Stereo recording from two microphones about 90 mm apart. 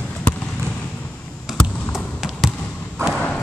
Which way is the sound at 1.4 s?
5° right (ahead or behind).